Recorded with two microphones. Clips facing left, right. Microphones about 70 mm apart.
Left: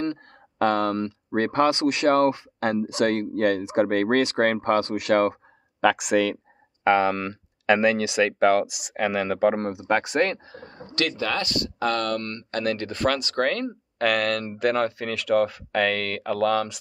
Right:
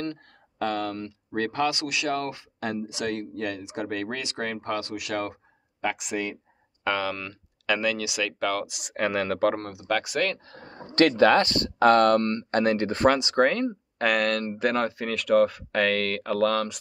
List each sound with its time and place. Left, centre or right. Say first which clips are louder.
0.0 s a sound: left 5 dB; left
1.3 s speech: left 5 dB; left
5.8 s speech: left 9 dB; left
6.8 s speech: left 8 dB; left
8.6 s speech: left 2 dB; centre
9.6 s speech: left 4 dB; left
11.1 s speech: right 12 dB; right
11.3 s speech: right 5 dB; right
12.2 s speech: right 5 dB; right; by 16.7 s centre